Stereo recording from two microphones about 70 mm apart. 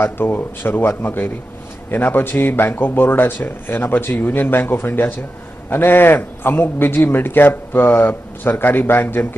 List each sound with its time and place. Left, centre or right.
0.0 s a man's voice: left